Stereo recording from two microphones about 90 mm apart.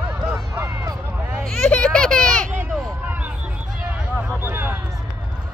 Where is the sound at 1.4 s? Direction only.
10° left (ahead or behind).